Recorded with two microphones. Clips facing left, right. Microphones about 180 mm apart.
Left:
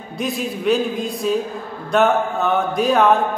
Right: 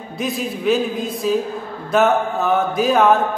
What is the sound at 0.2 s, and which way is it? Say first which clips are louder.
A man's voice: even; centre (ahead or behind).